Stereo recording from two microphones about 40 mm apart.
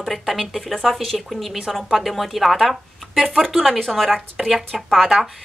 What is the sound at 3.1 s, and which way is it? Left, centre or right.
Speech, centre.